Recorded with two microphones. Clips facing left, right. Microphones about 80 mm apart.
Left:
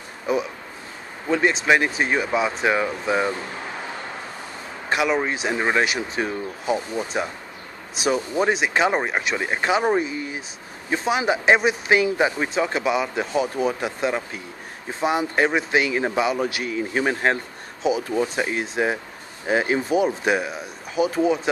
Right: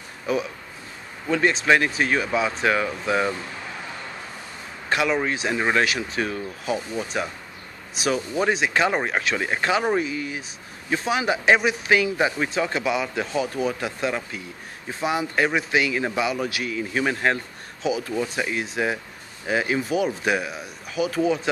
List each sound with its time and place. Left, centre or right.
0.3 s speech: left
4.8 s speech: centre
10.1 s a sound: left
10.9 s speech: left